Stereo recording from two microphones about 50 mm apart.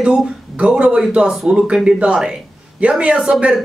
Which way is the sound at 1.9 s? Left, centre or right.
Right.